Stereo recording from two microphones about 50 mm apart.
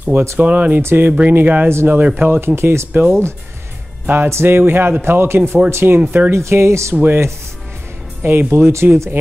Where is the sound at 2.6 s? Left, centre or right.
Right.